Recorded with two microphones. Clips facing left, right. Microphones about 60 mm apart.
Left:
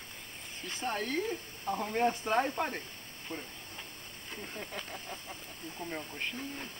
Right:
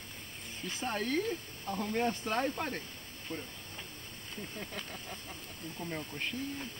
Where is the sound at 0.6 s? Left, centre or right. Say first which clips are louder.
Even; centre.